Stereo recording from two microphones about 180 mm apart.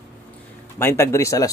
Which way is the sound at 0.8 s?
15° left (ahead or behind).